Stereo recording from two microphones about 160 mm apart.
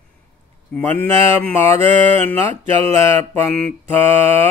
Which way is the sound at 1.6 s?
40° right (ahead or behind).